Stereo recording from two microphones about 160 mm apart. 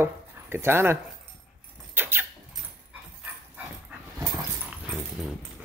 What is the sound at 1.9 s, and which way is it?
Vehicle, 15° right (ahead or behind).